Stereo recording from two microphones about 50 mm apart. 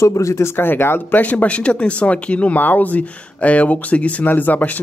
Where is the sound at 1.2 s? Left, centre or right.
Left.